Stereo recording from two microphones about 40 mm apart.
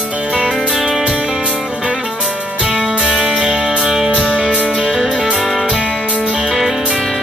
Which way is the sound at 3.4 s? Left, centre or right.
Centre.